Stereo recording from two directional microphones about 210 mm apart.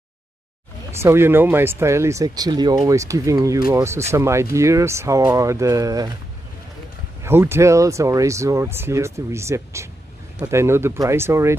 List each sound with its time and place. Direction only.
0.9 s speech: 10° right (ahead or behind)
7.2 s speech: 10° right (ahead or behind)